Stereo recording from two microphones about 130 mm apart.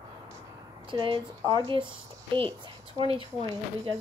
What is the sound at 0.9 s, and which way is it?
A woman's voice, 40° right (ahead or behind).